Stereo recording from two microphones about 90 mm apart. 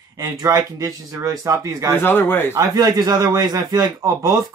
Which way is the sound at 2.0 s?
25° left (ahead or behind).